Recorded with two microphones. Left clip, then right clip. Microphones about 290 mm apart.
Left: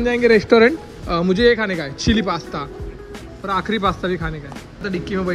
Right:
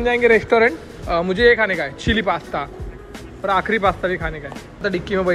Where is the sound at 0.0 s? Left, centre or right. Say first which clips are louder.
Even; centre.